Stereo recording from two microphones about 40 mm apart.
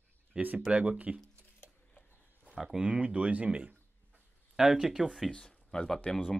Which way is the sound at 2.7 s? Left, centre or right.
Right.